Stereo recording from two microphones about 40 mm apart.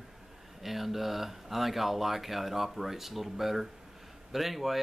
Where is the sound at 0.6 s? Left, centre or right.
Centre.